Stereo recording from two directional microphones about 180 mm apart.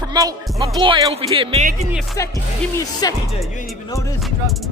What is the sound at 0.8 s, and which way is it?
Speech, 30° right (ahead or behind).